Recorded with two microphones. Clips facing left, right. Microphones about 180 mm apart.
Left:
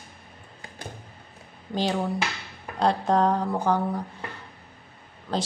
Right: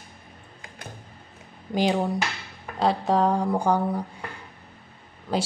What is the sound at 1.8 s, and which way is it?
Speech, 15° right (ahead or behind).